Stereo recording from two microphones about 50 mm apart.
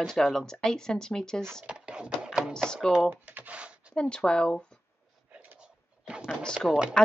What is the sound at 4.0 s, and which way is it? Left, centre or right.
Speech, centre.